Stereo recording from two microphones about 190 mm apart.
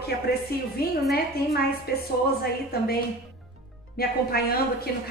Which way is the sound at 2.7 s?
55° left (ahead or behind).